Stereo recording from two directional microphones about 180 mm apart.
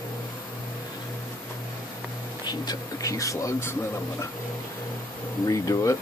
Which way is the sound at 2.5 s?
20° left (ahead or behind).